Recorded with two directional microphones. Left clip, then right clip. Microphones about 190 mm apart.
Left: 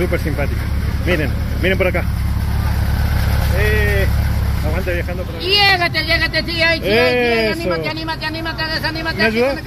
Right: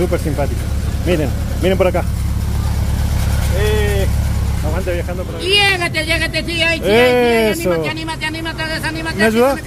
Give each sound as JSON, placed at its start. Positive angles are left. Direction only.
{"t": 0.0, "sound": "speech", "side_deg": -10}
{"t": 3.8, "sound": "vehicle", "side_deg": -15}
{"t": 4.7, "sound": "speech", "side_deg": -5}
{"t": 5.4, "sound": "speech", "side_deg": 5}
{"t": 6.8, "sound": "speech", "side_deg": -30}
{"t": 7.3, "sound": "speech", "side_deg": 0}
{"t": 9.3, "sound": "speech", "side_deg": -30}